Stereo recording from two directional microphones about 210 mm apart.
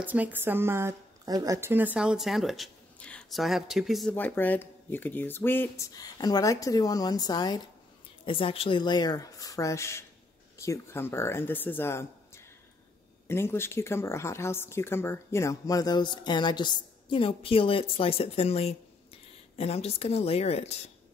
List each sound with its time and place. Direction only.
0.0 s speech: 5° right (ahead or behind); by 20.7 s 30° left (ahead or behind)